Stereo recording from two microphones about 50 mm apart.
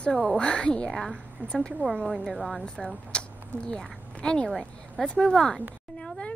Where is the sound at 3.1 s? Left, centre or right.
Centre.